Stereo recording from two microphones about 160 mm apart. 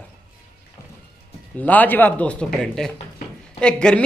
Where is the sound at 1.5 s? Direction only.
10° left (ahead or behind).